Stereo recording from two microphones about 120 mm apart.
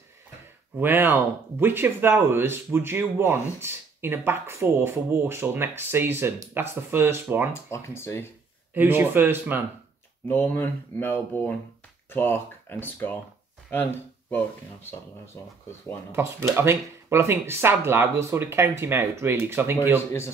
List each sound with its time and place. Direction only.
0.7 s speech: 15° right (ahead or behind)
7.5 s speech: 20° left (ahead or behind)
8.7 s speech: 15° right (ahead or behind)
10.2 s speech: 20° left (ahead or behind)
15.4 s speech: 20° left (ahead or behind)
16.1 s speech: 20° right (ahead or behind)